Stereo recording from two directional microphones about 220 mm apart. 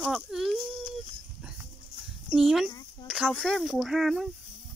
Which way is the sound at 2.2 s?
Centre (ahead or behind).